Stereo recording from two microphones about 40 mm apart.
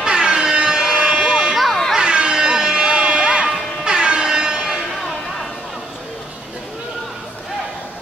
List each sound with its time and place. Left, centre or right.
0.0 s a sound: centre
1.5 s music: centre
2.0 s music: right
3.8 s air horn: centre